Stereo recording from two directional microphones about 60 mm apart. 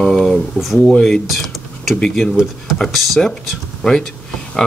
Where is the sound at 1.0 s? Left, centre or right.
Centre.